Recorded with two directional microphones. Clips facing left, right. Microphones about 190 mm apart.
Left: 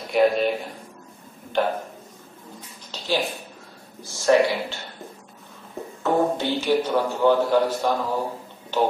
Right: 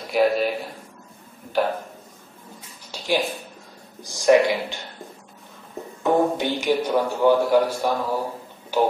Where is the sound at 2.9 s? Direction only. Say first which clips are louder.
Right 1 dB; 10° right (ahead or behind).